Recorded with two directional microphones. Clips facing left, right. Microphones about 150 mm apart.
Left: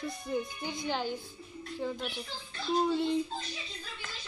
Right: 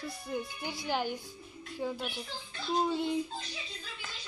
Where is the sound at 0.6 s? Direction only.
10° right (ahead or behind).